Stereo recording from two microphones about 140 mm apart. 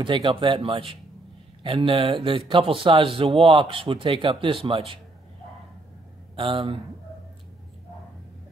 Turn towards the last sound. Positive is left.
turn(degrees=-40)  # may be behind; listen again after turning